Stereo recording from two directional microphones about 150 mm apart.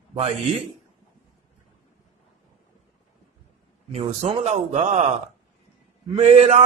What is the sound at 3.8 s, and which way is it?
Male singing, 45° right (ahead or behind).